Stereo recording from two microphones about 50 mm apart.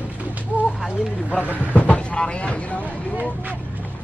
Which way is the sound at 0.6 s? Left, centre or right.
Right.